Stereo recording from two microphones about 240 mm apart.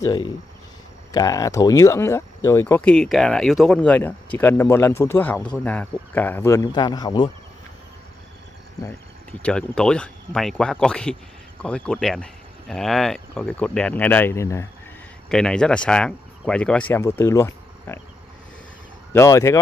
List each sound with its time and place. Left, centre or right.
0.0 s speech: centre
9.4 s speech: centre
19.1 s speech: centre